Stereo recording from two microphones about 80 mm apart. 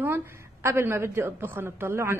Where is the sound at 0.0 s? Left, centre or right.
Right.